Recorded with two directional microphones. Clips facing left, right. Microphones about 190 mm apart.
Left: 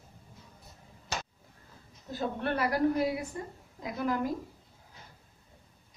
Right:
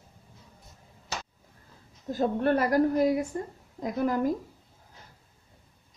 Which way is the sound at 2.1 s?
45° right (ahead or behind).